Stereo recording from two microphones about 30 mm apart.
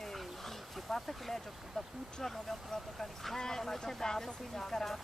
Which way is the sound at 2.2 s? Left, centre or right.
Centre.